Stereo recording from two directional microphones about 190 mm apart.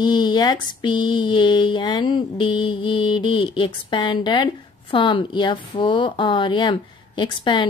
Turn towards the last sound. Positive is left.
turn(degrees=25)  # may be behind; listen again after turning